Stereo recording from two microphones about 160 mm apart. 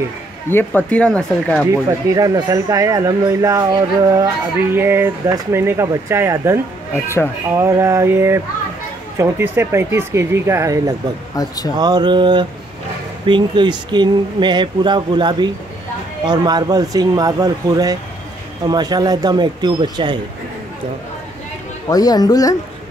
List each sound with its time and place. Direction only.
0.5 s speech: 10° left (ahead or behind)
1.7 s speech: 20° right (ahead or behind)
4.7 s speech: 15° right (ahead or behind)
11.3 s speech: 25° left (ahead or behind)
11.8 s speech: 25° right (ahead or behind)
21.8 s speech: 25° left (ahead or behind)